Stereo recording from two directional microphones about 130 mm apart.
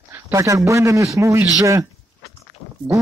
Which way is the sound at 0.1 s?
25° right (ahead or behind).